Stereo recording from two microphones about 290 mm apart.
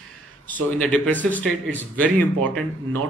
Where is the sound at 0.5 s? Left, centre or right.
Centre.